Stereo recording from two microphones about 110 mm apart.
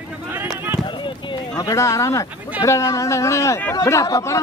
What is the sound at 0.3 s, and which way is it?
Run, 20° right (ahead or behind).